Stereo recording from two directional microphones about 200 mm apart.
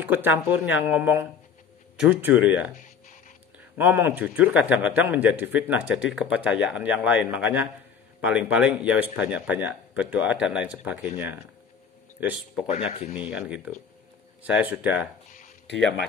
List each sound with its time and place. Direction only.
0.0 s a man's voice: 10° right (ahead or behind)
2.8 s a sound: 40° left (ahead or behind)
3.7 s a man's voice: 10° right (ahead or behind)